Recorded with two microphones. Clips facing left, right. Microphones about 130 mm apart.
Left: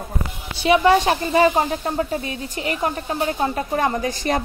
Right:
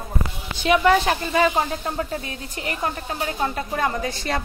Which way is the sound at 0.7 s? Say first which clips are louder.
Left 2 dB; 25° left (ahead or behind).